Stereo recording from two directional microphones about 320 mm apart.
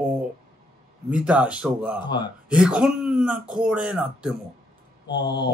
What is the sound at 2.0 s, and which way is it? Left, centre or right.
Speech, centre.